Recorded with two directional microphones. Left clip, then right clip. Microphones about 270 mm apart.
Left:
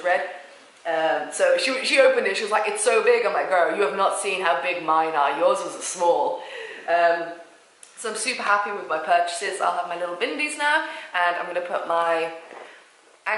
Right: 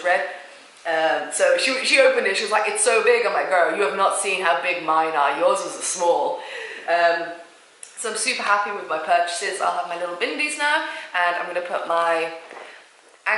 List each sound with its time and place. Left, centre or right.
0.0 s a man's voice: centre
6.1 s speech: left
6.4 s speech: centre